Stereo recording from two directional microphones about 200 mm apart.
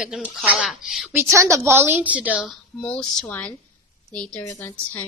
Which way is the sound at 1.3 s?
15° right (ahead or behind).